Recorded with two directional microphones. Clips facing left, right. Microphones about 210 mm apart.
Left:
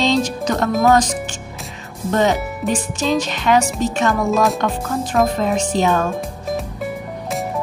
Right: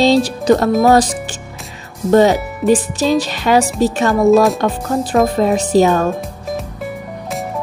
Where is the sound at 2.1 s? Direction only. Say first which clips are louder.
Right 7 dB; 35° right (ahead or behind).